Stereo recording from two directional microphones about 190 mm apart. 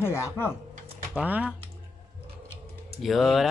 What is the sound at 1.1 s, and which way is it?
Speech, 5° right (ahead or behind).